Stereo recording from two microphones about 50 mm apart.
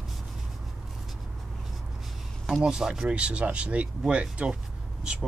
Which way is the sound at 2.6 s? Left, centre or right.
Centre.